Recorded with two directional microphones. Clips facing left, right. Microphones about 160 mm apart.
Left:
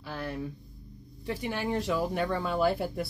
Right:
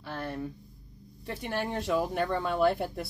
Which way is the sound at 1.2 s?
Centre (ahead or behind).